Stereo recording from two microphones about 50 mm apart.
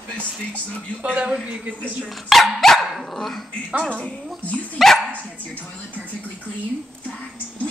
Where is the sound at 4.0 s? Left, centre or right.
Left.